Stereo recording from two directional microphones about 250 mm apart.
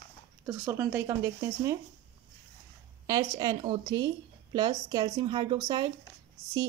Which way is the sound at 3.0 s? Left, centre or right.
Centre.